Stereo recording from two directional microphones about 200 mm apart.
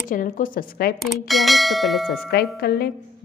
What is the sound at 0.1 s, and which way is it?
Speech, 45° left (ahead or behind).